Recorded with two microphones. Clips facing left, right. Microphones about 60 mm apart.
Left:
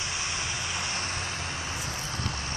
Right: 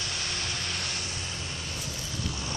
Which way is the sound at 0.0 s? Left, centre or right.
Centre.